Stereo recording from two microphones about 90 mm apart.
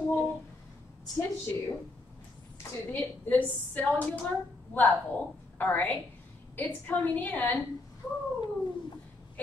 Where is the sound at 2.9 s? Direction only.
15° left (ahead or behind).